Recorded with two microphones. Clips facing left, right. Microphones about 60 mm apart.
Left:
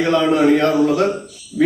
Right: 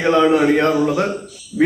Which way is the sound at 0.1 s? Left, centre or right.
Centre.